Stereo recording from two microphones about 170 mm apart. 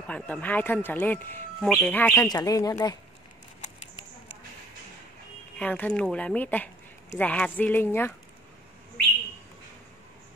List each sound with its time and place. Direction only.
0.0 s speech: 10° left (ahead or behind)
2.2 s speech: 20° left (ahead or behind)
5.6 s speech: 5° left (ahead or behind)